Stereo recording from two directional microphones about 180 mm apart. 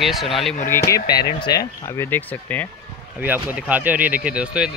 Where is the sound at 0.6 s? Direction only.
15° left (ahead or behind).